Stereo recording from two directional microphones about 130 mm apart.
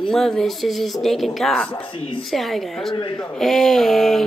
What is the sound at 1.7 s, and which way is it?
Speech, 40° left (ahead or behind).